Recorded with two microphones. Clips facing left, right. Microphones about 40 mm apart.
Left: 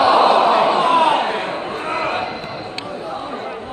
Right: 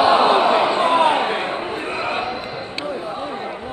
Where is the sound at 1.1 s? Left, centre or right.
Centre.